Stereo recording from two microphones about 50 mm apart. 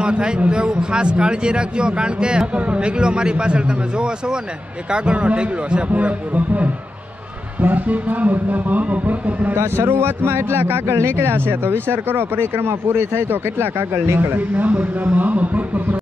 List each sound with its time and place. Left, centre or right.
0.0 s speech: right
9.5 s speech: right
14.5 s speech: right